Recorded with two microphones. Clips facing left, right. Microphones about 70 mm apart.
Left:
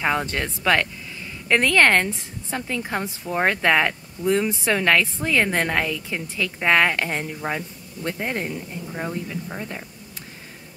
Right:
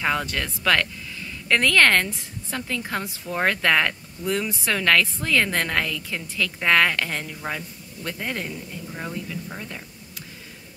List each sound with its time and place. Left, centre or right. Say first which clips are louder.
0.0 s speech: left 2 dB; left